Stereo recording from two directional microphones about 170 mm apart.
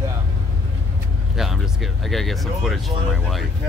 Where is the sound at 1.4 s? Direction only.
Centre (ahead or behind).